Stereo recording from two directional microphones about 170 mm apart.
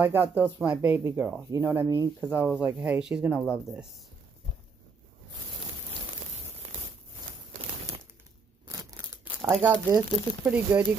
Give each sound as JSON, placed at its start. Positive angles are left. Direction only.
{"t": 0.0, "sound": "speech", "side_deg": -15}
{"t": 8.6, "sound": "scissors", "side_deg": -20}
{"t": 9.6, "sound": "speech", "side_deg": -10}